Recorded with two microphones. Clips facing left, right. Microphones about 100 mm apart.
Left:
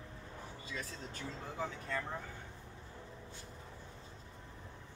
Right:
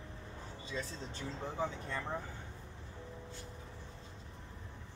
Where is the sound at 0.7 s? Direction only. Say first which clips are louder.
Right 4 dB; 30° right (ahead or behind).